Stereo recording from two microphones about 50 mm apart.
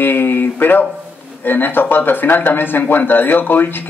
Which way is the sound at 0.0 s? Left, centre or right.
Left.